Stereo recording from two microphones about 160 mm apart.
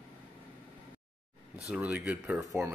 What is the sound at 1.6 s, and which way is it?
Speech, 5° right (ahead or behind).